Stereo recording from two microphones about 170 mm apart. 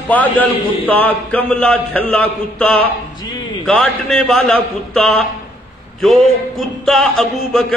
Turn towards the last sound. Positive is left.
turn(degrees=0)  # may be behind; listen again after turning